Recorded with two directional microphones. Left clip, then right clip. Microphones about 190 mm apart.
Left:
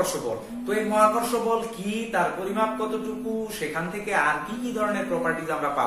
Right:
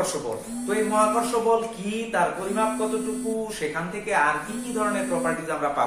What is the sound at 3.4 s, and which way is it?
A man's voice, centre (ahead or behind).